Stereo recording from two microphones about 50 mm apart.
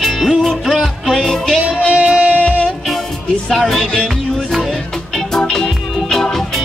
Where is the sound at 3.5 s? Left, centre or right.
Centre.